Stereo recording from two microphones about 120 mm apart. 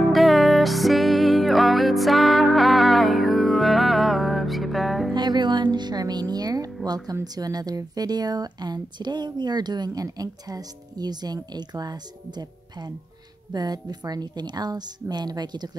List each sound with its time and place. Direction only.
0.0 s music: centre (ahead or behind)
5.1 s music: 35° right (ahead or behind)
6.3 s speech: 30° right (ahead or behind)